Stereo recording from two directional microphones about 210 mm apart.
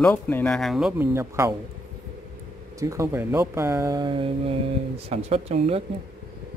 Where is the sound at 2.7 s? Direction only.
15° right (ahead or behind).